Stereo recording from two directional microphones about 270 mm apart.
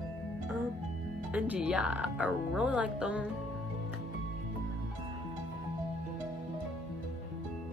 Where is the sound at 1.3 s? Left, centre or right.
Centre.